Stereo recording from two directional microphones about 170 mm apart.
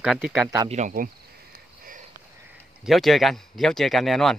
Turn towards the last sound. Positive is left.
turn(degrees=0)  # may be behind; listen again after turning